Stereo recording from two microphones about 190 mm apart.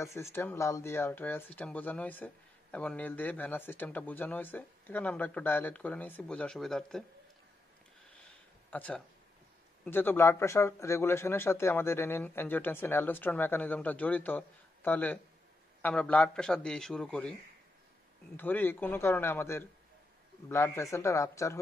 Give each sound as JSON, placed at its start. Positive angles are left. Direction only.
{"t": 0.0, "sound": "speech", "side_deg": 15}
{"t": 8.6, "sound": "a man's voice", "side_deg": 10}